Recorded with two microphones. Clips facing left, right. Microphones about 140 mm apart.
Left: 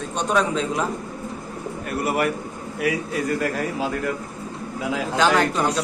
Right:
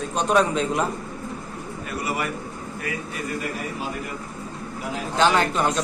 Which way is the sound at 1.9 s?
60° left (ahead or behind).